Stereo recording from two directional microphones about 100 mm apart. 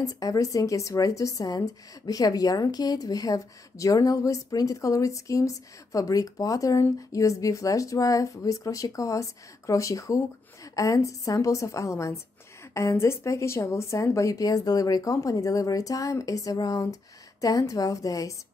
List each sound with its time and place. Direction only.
0.0 s a woman's voice: 35° left (ahead or behind)